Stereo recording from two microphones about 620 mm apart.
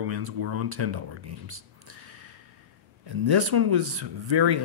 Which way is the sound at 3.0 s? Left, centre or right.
Right.